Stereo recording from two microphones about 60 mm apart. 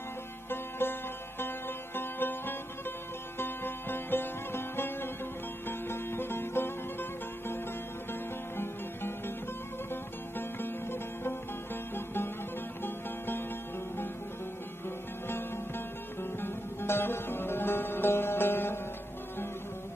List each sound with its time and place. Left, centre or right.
0.5 s music: left
2.0 s music: left
3.3 s sitar: left
5.7 s music: left
10.3 s music: left
15.2 s music: left